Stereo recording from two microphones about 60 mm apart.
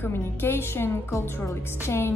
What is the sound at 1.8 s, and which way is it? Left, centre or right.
Music, left.